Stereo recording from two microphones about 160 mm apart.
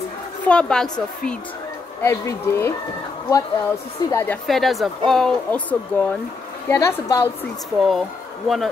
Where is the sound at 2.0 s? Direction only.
15° left (ahead or behind).